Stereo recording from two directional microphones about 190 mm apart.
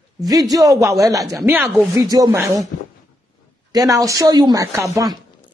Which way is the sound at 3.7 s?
20° right (ahead or behind).